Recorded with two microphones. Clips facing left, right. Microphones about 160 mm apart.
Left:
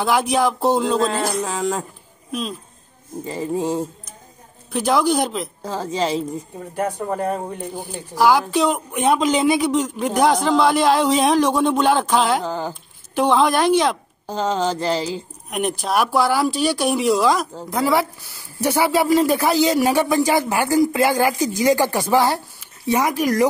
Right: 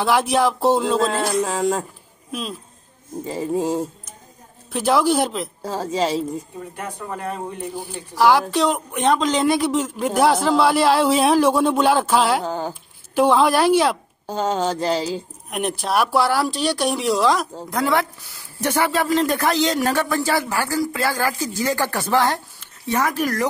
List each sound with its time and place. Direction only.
0.0 s speech: centre (ahead or behind)
3.3 s speech: centre (ahead or behind)
6.8 s speech: 40° left (ahead or behind)
7.7 s speech: centre (ahead or behind)